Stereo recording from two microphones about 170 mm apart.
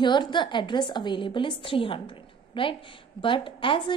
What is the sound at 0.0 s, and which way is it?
A woman's voice, 25° left (ahead or behind).